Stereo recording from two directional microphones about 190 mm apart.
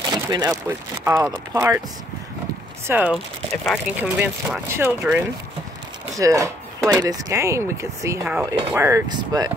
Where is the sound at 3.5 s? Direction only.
5° left (ahead or behind).